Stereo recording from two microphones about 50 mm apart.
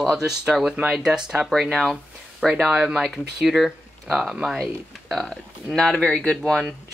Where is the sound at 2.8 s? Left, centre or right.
Centre.